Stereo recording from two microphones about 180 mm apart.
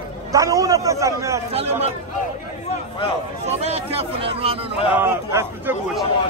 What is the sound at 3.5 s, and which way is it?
Speech, 35° right (ahead or behind).